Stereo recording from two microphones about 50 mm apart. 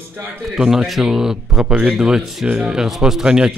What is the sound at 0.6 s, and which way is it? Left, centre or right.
A man's voice, centre.